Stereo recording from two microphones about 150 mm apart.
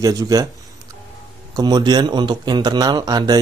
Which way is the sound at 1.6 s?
25° right (ahead or behind).